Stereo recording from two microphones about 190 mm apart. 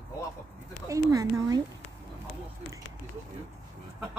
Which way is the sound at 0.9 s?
20° right (ahead or behind).